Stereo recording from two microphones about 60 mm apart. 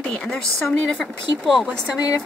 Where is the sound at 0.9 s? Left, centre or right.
Centre.